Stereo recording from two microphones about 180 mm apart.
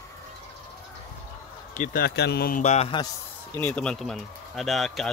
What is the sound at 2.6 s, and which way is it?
Speech, 35° left (ahead or behind).